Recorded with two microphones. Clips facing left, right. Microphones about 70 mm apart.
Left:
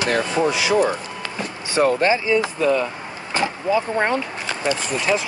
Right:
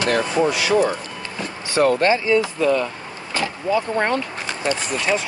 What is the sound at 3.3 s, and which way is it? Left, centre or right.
Speech, left.